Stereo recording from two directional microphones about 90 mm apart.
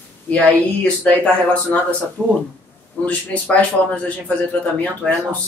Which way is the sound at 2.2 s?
5° left (ahead or behind).